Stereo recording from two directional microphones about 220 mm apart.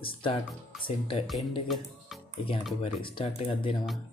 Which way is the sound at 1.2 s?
Centre (ahead or behind).